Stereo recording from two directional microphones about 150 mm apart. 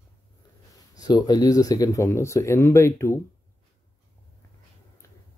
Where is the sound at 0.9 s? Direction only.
25° left (ahead or behind).